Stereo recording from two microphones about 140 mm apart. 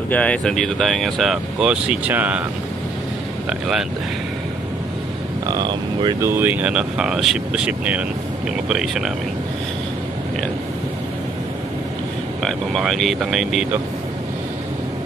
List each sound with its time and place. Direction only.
0.1 s speech: 10° left (ahead or behind); by 2.4 s 10° right (ahead or behind)
3.4 s speech: 5° right (ahead or behind)
5.5 s speech: 30° right (ahead or behind)
6.3 s speech: 15° right (ahead or behind)
12.4 s speech: centre (ahead or behind)